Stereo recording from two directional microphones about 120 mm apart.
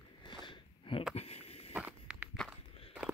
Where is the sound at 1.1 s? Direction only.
60° left (ahead or behind).